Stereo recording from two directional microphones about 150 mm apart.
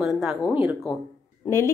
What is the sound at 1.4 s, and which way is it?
Speech, 20° left (ahead or behind).